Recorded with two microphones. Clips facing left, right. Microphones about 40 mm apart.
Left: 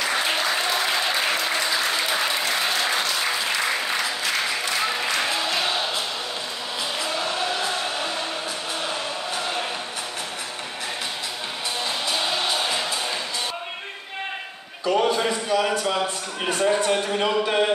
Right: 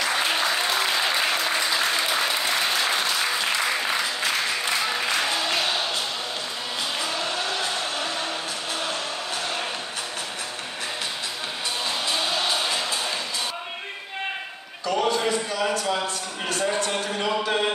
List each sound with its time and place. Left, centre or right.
0.1 s applause: centre
2.0 s applause: centre
12.2 s music: centre
14.9 s a sound: centre
16.4 s speech: centre